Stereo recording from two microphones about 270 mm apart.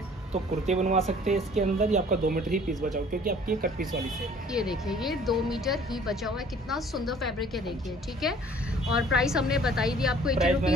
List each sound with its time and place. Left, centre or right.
0.3 s speech: right
4.5 s speech: centre
8.9 s speech: centre